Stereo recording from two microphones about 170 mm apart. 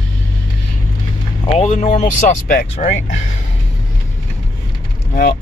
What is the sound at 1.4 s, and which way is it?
Speech, 40° left (ahead or behind).